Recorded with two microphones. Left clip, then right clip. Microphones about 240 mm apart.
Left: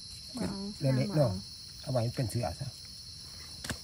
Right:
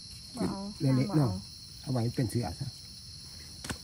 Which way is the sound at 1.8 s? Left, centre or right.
Left.